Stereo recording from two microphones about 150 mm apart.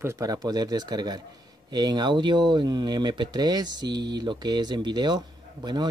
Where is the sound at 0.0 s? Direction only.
20° right (ahead or behind).